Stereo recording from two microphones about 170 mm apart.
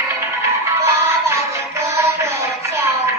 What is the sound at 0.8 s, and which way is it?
Music, 15° right (ahead or behind).